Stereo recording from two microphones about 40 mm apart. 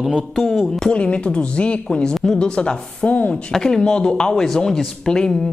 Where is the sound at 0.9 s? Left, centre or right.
Left.